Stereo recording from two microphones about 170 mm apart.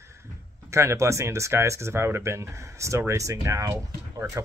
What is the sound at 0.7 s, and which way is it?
Speech, 15° right (ahead or behind).